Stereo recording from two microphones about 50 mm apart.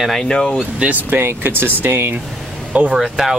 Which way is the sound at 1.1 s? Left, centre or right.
Right.